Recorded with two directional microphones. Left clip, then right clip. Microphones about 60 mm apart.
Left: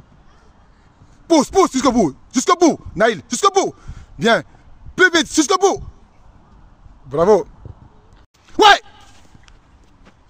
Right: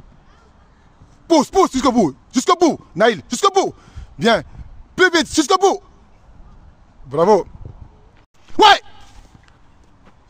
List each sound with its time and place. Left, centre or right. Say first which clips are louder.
1.2 s a man's voice: even; right
7.1 s speech: even; centre
8.5 s gasp: even; centre